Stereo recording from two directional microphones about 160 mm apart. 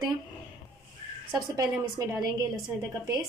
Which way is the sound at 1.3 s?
25° right (ahead or behind).